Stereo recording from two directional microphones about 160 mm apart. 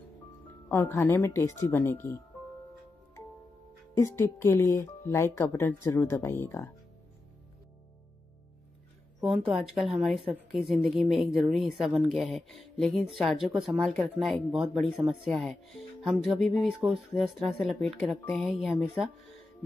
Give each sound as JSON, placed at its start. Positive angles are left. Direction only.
{"t": 0.7, "sound": "speech", "side_deg": 15}
{"t": 3.9, "sound": "speech", "side_deg": 15}
{"t": 9.5, "sound": "speech", "side_deg": 0}
{"t": 13.9, "sound": "speech", "side_deg": 10}
{"t": 14.3, "sound": "speech", "side_deg": -5}